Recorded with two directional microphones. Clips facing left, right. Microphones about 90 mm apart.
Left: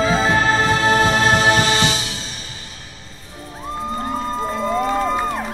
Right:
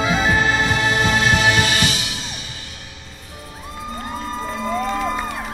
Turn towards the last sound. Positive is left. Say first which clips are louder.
# left 3 dB
turn(degrees=40)  # may be behind; listen again after turning